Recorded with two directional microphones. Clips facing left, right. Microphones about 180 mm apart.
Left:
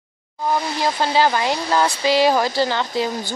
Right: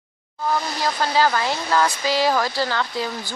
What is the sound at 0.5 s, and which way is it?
Speech, 20° left (ahead or behind).